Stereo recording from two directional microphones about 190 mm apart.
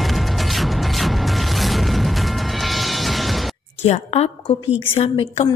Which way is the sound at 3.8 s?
35° left (ahead or behind).